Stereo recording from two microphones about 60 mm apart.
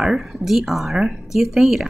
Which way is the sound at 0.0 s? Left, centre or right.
Centre.